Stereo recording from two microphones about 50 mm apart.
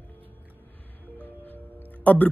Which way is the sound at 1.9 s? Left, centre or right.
Left.